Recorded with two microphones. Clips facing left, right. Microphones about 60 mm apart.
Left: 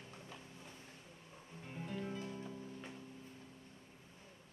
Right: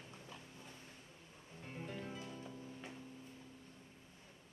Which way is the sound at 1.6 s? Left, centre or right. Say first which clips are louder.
Left 2 dB; centre.